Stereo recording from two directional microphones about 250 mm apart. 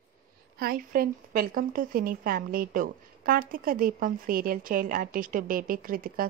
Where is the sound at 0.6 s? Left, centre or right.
Right.